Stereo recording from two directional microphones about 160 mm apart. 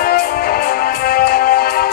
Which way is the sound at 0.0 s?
70° left (ahead or behind).